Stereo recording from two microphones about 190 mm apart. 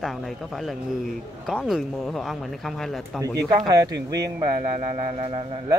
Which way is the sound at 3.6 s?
20° right (ahead or behind).